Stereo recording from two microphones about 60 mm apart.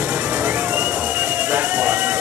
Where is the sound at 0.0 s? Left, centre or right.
Centre.